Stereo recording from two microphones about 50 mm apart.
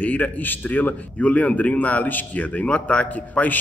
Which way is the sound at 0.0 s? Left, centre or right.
Left.